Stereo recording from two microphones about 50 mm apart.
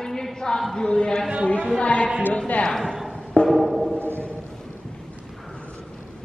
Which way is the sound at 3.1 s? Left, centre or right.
Centre.